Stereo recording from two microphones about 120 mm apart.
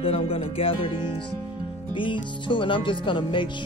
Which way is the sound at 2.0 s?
45° left (ahead or behind).